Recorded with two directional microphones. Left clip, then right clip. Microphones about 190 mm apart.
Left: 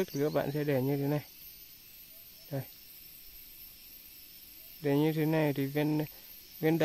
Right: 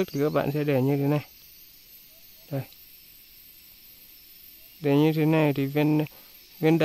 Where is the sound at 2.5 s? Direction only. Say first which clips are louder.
Right 6 dB; 35° right (ahead or behind).